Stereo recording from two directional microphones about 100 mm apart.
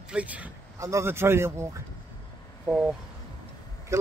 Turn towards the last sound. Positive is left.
turn(degrees=-30)  # may be behind; listen again after turning